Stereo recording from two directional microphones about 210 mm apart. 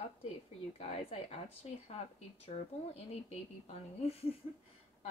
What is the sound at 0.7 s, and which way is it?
Speech, 30° left (ahead or behind).